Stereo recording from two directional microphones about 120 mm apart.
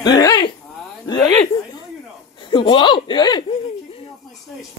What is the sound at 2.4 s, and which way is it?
Speech, 40° left (ahead or behind).